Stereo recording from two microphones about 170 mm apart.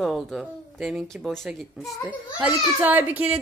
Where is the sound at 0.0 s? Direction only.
Centre (ahead or behind).